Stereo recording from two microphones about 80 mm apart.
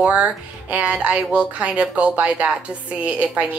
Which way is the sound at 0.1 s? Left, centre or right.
Centre.